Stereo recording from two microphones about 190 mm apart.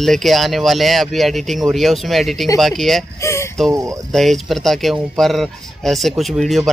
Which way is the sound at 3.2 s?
15° left (ahead or behind).